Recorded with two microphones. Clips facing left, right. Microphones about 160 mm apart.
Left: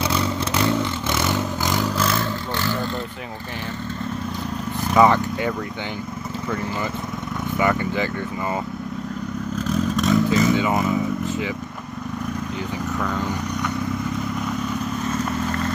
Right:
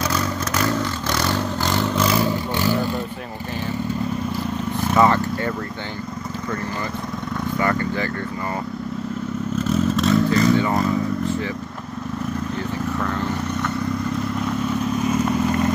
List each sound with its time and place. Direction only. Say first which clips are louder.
0.0 s vehicle: left 1 dB; 25° left (ahead or behind)
0.6 s vehicle: left 1 dB; 15° left (ahead or behind)
2.0 s vehicle: right 4 dB; 10° right (ahead or behind)
4.9 s vehicle: left 1 dB; 15° left (ahead or behind)
7.5 s a sound: left 2 dB; 15° left (ahead or behind)
9.6 s vehicle: right 2 dB; 5° right (ahead or behind)
15.0 s vehicle: right 5 dB; 10° right (ahead or behind)